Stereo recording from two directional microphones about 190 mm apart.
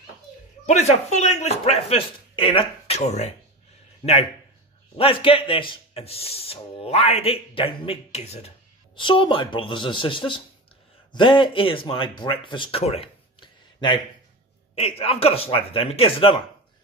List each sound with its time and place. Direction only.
0.7 s speech: 35° left (ahead or behind)